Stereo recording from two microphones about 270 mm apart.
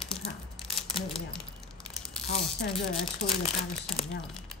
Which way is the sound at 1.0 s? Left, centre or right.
Centre.